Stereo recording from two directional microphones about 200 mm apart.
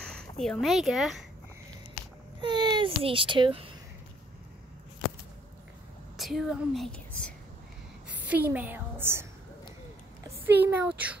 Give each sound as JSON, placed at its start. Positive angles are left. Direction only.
{"t": 0.1, "sound": "speech", "side_deg": 5}
{"t": 2.4, "sound": "a child's voice", "side_deg": -20}
{"t": 6.1, "sound": "speech", "side_deg": 0}
{"t": 8.1, "sound": "a woman's voice", "side_deg": -10}
{"t": 10.2, "sound": "speech", "side_deg": -10}